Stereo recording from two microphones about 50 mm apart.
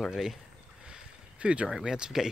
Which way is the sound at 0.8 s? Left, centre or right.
Centre.